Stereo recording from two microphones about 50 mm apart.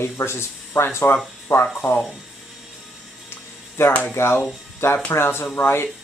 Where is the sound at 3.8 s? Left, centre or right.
Left.